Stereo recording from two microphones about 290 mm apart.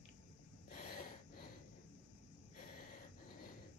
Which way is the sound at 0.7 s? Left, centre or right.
Left.